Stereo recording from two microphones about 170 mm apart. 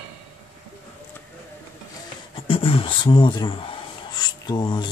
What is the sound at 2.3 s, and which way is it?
Speech, 30° left (ahead or behind).